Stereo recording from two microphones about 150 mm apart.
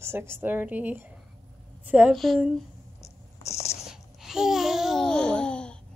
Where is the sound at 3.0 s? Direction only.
45° left (ahead or behind).